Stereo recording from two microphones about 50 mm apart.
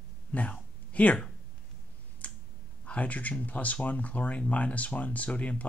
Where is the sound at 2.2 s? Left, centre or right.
Left.